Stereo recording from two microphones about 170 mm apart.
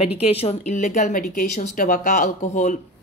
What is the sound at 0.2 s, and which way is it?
Speech, 35° left (ahead or behind).